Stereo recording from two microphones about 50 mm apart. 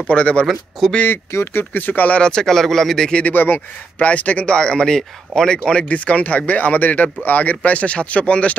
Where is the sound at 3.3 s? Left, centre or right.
Left.